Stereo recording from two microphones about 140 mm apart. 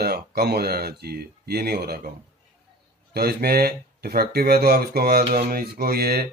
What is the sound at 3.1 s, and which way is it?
Speech, 90° right.